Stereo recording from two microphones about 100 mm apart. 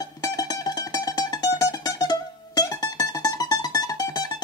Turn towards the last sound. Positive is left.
turn(degrees=40)  # may be behind; listen again after turning